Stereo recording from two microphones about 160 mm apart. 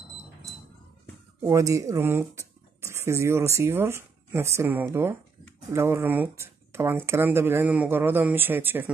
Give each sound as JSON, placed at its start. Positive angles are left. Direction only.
{"t": 1.4, "sound": "speech", "side_deg": -20}